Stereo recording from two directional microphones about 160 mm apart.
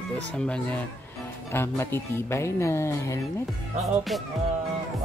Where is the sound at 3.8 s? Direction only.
Centre (ahead or behind).